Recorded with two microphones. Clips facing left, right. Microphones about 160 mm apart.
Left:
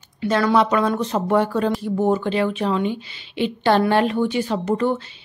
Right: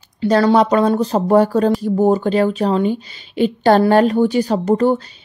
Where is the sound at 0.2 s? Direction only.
30° right (ahead or behind).